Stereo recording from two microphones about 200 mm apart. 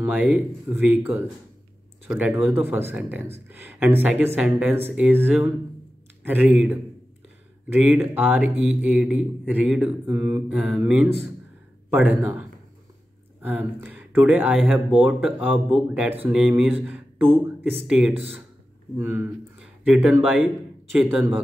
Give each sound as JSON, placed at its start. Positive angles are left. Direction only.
{"t": 0.0, "sound": "a man's voice", "side_deg": -10}